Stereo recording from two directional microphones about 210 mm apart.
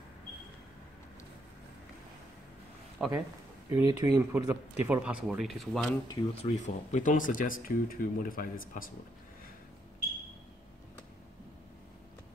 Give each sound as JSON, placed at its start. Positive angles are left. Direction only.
{"t": 3.0, "sound": "speech", "side_deg": 0}
{"t": 3.6, "sound": "speech", "side_deg": -20}
{"t": 6.0, "sound": "speech", "side_deg": 30}